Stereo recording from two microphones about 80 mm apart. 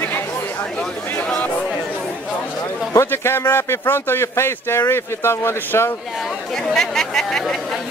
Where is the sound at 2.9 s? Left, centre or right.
Left.